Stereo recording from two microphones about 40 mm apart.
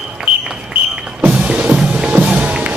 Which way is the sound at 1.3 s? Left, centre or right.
Right.